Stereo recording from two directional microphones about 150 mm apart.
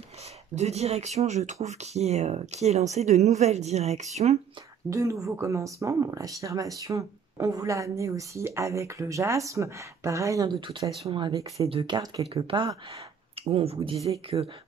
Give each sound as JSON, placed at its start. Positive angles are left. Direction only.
{"t": 0.6, "sound": "speech", "side_deg": -45}
{"t": 4.8, "sound": "speech", "side_deg": -20}